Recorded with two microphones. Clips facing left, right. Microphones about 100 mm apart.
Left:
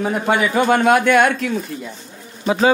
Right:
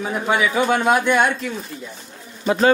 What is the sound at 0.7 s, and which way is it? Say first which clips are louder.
Speech: left 5 dB; 70° left (ahead or behind).